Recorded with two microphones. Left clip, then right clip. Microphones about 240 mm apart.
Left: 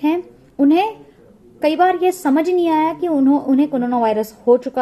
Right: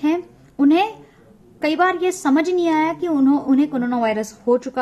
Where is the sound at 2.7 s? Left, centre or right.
Right.